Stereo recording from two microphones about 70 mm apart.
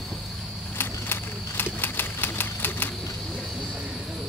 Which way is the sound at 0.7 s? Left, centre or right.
Left.